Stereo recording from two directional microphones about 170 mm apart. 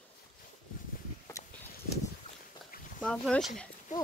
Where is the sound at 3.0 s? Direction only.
5° left (ahead or behind).